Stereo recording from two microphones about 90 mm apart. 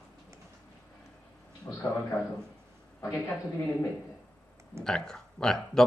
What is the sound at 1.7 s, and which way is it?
Speech, 30° left (ahead or behind).